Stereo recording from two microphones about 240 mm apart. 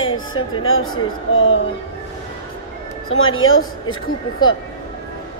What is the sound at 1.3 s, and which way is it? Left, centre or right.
Speech, left.